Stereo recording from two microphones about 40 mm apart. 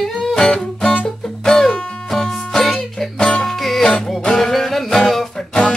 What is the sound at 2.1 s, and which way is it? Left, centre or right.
Music, centre.